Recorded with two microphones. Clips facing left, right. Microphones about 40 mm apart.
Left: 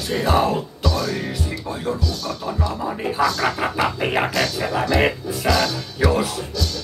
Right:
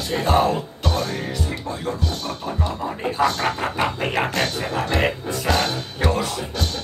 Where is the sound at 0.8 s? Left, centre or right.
Right.